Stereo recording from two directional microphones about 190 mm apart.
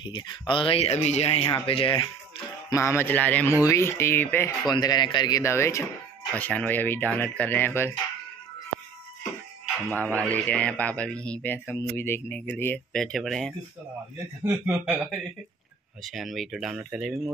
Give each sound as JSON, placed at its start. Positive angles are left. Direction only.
{"t": 0.0, "sound": "a man's voice", "side_deg": 25}
{"t": 4.6, "sound": "a man's voice", "side_deg": 20}
{"t": 9.8, "sound": "a man's voice", "side_deg": 10}